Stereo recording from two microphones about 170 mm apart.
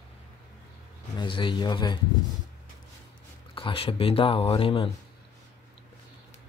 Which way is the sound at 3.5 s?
30° left (ahead or behind).